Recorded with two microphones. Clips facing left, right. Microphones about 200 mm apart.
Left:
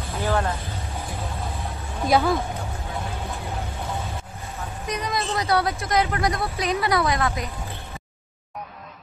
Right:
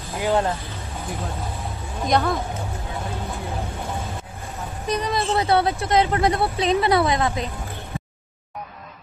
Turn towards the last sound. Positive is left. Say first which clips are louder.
# right 3 dB
turn(degrees=-25)  # may be behind; listen again after turning